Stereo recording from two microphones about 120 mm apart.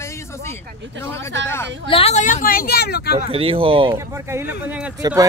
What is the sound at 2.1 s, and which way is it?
Speech, 90° left.